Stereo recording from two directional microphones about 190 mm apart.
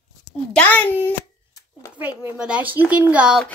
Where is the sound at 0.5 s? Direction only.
10° left (ahead or behind).